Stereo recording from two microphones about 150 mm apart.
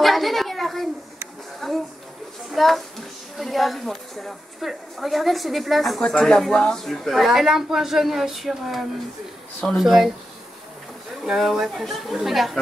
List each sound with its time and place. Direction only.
0.0 s a sound: centre (ahead or behind)
2.5 s a woman's voice: centre (ahead or behind)
11.2 s a woman's voice: centre (ahead or behind)